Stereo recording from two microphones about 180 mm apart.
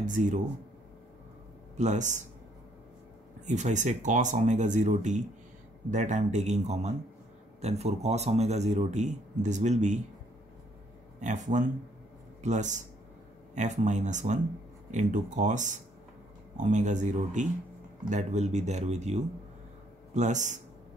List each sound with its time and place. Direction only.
0.0 s speech: 45° right (ahead or behind)
1.8 s speech: 40° right (ahead or behind)
3.4 s a man's voice: 40° right (ahead or behind)
11.1 s a man's voice: 45° right (ahead or behind)